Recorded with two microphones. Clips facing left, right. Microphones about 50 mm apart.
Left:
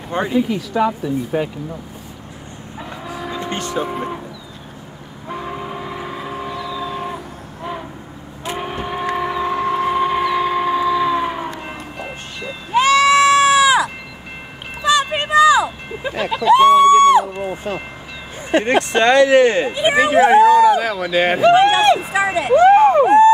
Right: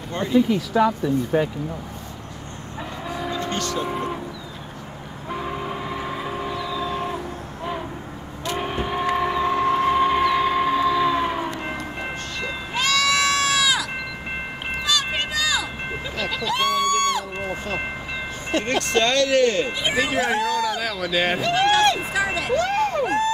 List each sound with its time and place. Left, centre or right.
0.1 s speech: centre
0.5 s livestock: centre
1.0 s speech: centre
2.8 s train: centre
3.3 s vehicle: centre
3.8 s livestock: centre
5.3 s train: centre
8.5 s a sound: centre
12.7 s goat: left
14.9 s a sound: left
16.4 s music: left
17.3 s a sound: right
18.5 s speech: left
22.1 s a sound: left